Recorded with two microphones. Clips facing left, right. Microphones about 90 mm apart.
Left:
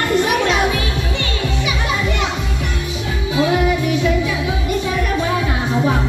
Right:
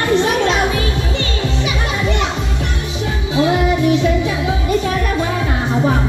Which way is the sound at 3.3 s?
30° right (ahead or behind).